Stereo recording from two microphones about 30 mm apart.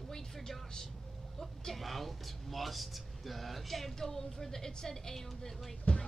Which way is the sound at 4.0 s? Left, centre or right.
Centre.